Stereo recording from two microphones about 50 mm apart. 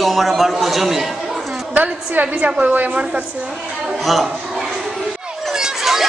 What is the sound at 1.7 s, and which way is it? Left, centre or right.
A woman's voice, right.